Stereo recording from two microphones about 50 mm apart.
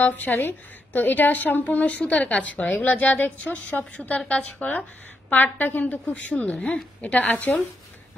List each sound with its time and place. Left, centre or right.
0.3 s a woman's voice: left
0.9 s a woman's voice: left
1.9 s a woman's voice: left